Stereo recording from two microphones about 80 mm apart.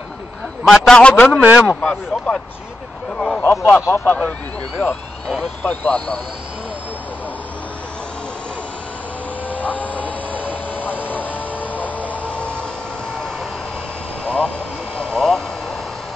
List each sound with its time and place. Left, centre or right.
0.7 s a man's voice: centre
1.3 s a man's voice: centre
1.8 s speech: centre
3.4 s speech: left
5.6 s speech: left
9.5 s a sound: centre
11.1 s music: left
14.2 s vehicle: centre